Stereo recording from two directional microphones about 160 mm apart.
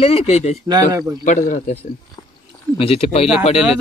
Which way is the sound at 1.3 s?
50° left (ahead or behind).